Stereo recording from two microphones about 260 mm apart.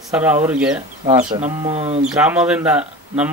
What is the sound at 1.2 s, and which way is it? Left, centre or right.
Speech, right.